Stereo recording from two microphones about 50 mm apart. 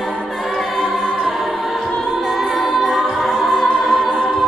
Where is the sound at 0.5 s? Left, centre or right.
Centre.